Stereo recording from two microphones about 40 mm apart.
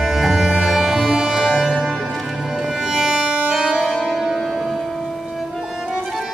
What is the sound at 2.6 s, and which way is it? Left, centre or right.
Music, centre.